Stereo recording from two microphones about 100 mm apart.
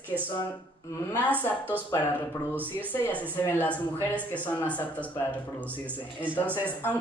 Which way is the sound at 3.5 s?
20° left (ahead or behind).